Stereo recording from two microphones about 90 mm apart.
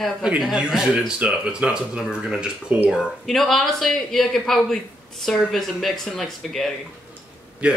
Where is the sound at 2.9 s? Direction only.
Centre (ahead or behind).